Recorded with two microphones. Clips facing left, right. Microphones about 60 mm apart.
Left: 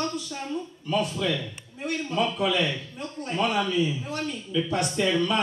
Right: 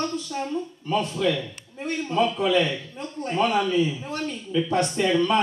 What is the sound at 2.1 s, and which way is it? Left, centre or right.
A man's voice, centre.